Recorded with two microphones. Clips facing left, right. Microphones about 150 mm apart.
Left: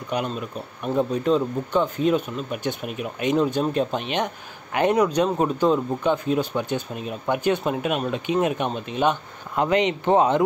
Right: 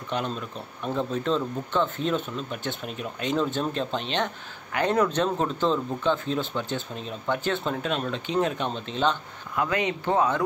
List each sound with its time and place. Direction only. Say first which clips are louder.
0.1 s speech: left 3 dB; 10° left (ahead or behind)